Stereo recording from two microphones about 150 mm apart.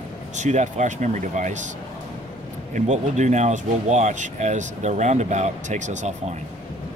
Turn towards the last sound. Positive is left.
turn(degrees=-55)  # may be behind; listen again after turning